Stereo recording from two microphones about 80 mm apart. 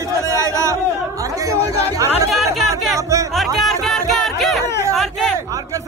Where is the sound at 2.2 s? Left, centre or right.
Centre.